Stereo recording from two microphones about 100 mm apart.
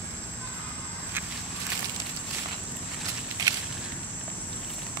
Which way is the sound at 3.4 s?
40° right (ahead or behind).